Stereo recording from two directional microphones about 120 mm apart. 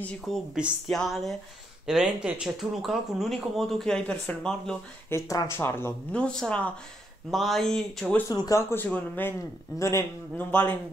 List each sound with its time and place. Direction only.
0.3 s speech: centre (ahead or behind)
5.1 s speech: 25° left (ahead or behind)
6.1 s speech: 10° left (ahead or behind)
8.3 s speech: 30° left (ahead or behind)
10.5 s speech: 10° left (ahead or behind)